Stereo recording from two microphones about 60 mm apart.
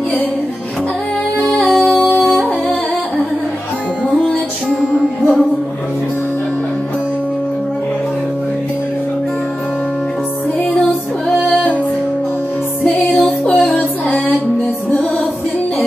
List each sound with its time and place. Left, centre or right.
1.7 s music: centre
12.8 s music: left
13.6 s music: centre